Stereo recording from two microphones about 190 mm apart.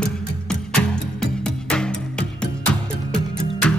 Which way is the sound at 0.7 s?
5° left (ahead or behind).